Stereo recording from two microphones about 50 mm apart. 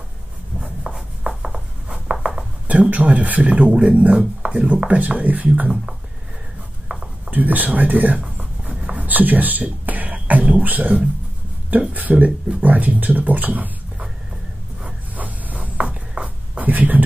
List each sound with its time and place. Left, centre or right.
1.2 s writing: centre
2.2 s speech: centre
6.9 s a sound: right
7.2 s speech: right
15.1 s writing: right